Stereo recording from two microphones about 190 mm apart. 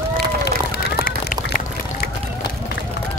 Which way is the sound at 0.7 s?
50° left (ahead or behind).